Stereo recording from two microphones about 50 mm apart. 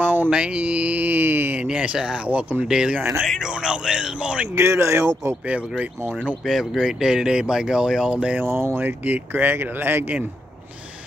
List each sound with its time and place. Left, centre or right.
0.0 s mantra: right
0.3 s speech: right
1.6 s speech: right
2.2 s speech: right
2.7 s speech: centre
4.6 s speech: right
6.4 s speech: centre
8.1 s speech: right
8.5 s speech: right
8.7 s speech: right